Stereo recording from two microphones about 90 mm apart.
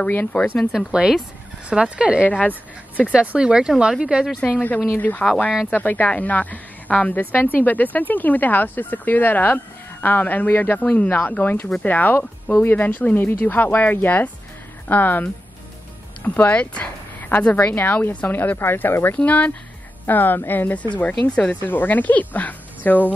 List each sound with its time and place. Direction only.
0.0 s speech: 15° left (ahead or behind)
0.7 s speech: 5° right (ahead or behind)
2.2 s speech: 15° left (ahead or behind)
3.0 s speech: 15° right (ahead or behind)
4.4 s a woman's voice: 15° left (ahead or behind)
16.3 s a woman's voice: 15° left (ahead or behind)